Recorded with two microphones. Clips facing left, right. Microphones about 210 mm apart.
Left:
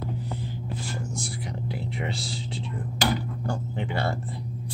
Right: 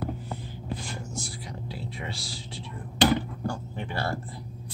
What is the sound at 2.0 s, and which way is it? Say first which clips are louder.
Speech: left 6 dB; 20° left (ahead or behind).